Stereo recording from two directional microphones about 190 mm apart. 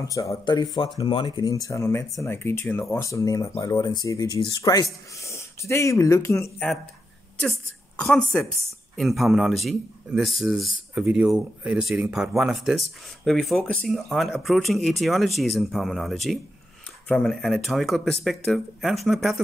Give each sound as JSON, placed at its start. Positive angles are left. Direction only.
{"t": 0.0, "sound": "a man's voice", "side_deg": 15}